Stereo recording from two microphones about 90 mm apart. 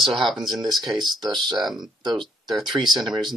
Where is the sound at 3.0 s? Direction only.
55° right (ahead or behind).